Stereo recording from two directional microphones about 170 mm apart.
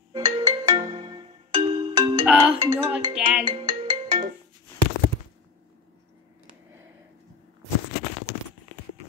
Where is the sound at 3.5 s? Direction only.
25° right (ahead or behind).